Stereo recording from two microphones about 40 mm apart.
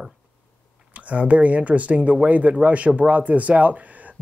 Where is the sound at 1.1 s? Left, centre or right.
Right.